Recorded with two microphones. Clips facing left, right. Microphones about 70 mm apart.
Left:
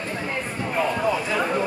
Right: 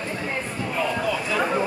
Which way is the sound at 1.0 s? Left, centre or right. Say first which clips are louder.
Left 2 dB; left.